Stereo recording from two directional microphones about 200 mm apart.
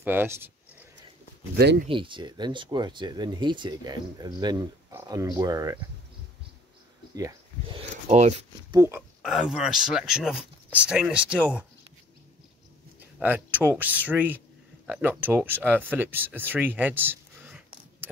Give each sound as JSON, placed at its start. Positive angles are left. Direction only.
{"t": 0.0, "sound": "speech", "side_deg": -10}
{"t": 1.9, "sound": "speech", "side_deg": -25}
{"t": 8.1, "sound": "speech", "side_deg": -35}
{"t": 8.7, "sound": "speech", "side_deg": -15}
{"t": 9.2, "sound": "speech", "side_deg": 0}
{"t": 13.2, "sound": "speech", "side_deg": -10}